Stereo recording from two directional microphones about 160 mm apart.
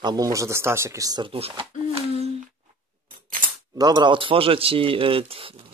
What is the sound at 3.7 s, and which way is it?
Speech, 25° right (ahead or behind).